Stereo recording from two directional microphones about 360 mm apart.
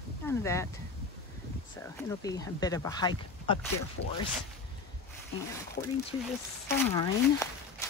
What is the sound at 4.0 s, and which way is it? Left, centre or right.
Speech, left.